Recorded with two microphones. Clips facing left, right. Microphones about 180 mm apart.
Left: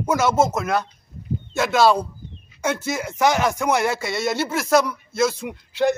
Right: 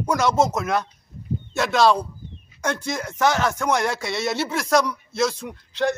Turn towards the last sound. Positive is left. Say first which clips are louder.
# left 3 dB
turn(degrees=10)  # may be behind; listen again after turning